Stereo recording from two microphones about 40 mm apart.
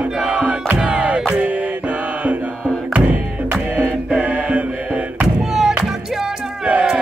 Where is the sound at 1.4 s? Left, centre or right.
Right.